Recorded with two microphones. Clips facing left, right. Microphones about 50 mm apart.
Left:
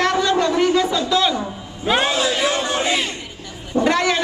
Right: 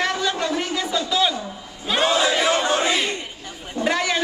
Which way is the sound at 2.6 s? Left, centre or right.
Right.